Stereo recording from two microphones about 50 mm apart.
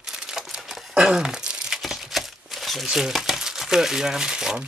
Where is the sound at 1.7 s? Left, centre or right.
Centre.